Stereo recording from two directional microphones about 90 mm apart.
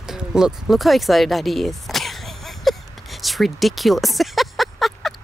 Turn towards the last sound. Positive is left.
turn(degrees=0)  # may be behind; listen again after turning